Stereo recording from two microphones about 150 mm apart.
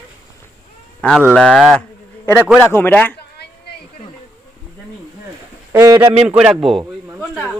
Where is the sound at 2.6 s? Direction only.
15° left (ahead or behind).